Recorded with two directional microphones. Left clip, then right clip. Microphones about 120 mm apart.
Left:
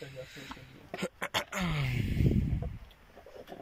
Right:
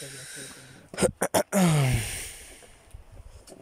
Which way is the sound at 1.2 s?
90° right.